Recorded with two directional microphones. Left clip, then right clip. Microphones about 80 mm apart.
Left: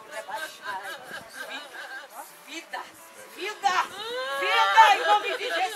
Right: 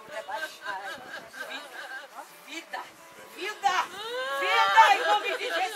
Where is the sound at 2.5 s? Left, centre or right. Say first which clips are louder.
Left 1 dB; centre.